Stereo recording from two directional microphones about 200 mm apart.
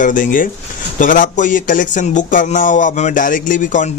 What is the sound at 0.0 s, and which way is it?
Speech, 40° left (ahead or behind).